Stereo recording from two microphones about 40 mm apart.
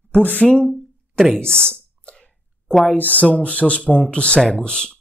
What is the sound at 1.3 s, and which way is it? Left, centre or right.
Speech, left.